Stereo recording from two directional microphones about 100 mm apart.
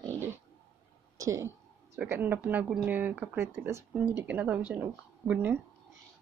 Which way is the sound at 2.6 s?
5° right (ahead or behind).